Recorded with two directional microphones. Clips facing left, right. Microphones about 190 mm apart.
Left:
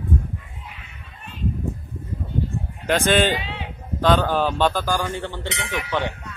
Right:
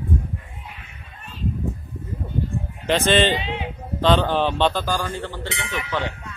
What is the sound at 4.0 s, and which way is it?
Speech, 5° left (ahead or behind).